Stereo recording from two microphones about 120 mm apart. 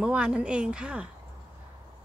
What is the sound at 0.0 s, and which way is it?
Speech, 5° right (ahead or behind).